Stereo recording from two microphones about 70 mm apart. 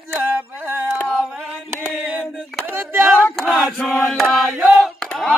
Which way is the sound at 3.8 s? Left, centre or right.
Centre.